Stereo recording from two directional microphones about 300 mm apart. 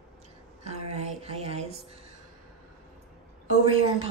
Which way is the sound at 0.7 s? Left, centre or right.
Right.